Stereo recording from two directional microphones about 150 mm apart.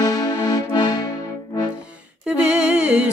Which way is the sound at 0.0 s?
25° left (ahead or behind).